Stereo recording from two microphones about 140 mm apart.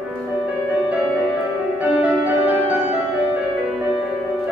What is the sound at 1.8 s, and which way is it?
Music, 10° right (ahead or behind).